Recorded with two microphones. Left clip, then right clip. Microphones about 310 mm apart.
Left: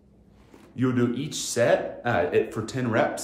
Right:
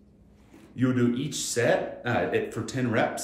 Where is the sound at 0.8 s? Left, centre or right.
Centre.